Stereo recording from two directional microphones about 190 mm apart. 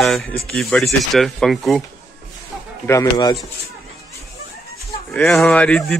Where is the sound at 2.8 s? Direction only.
15° left (ahead or behind).